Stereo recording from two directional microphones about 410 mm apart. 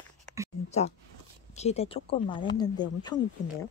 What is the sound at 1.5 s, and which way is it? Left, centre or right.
Speech, centre.